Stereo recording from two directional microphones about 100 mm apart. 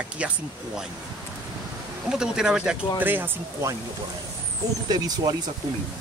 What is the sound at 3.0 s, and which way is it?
Speech, 20° right (ahead or behind).